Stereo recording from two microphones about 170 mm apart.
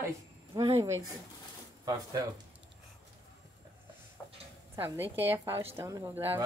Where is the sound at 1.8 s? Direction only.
25° right (ahead or behind).